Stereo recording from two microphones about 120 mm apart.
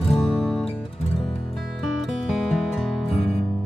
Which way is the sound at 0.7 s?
55° left (ahead or behind).